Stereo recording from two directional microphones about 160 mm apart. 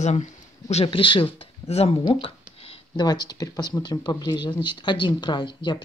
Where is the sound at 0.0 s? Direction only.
45° left (ahead or behind).